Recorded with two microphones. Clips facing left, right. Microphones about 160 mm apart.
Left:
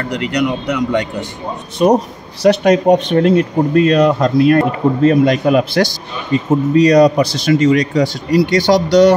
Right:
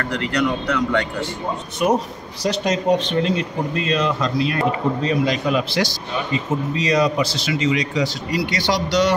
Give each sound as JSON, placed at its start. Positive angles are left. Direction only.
{"t": 0.0, "sound": "speech", "side_deg": 15}
{"t": 1.8, "sound": "speech", "side_deg": 30}
{"t": 2.4, "sound": "speech", "side_deg": 60}